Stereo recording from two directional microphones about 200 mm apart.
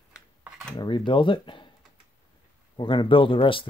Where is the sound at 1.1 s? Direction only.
25° left (ahead or behind).